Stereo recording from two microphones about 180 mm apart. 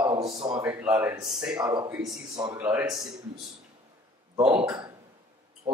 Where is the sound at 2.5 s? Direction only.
5° right (ahead or behind).